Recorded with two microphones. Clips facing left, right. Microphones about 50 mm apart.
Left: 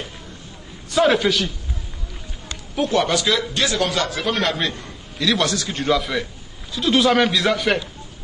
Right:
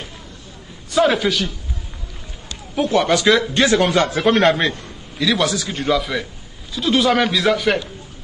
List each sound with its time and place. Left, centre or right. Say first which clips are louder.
0.9 s a man's voice: even; centre
2.7 s a man's voice: right 3 dB; centre; by 4.3 s right
4.3 s a man's voice: right 9 dB; centre